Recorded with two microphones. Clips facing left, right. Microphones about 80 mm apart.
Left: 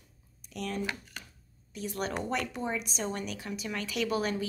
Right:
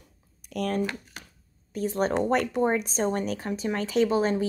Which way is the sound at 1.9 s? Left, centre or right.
Right.